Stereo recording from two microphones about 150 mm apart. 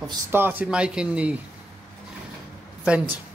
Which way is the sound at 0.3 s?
15° right (ahead or behind).